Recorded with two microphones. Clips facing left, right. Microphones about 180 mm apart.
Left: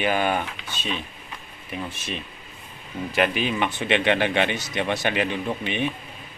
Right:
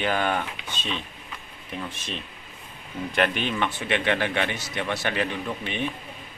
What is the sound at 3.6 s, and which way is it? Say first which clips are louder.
Speech: left 4 dB; 20° left (ahead or behind).